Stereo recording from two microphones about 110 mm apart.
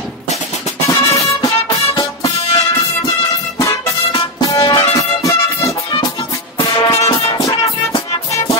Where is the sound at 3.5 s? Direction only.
30° left (ahead or behind).